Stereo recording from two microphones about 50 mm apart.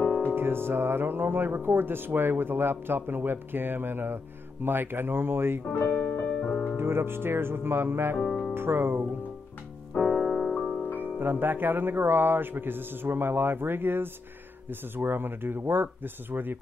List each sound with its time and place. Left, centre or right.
0.3 s speech: right
5.7 s speech: left
6.4 s music: centre
6.8 s speech: right
8.2 s music: centre
8.5 s speech: right
9.9 s music: centre
11.0 s speech: right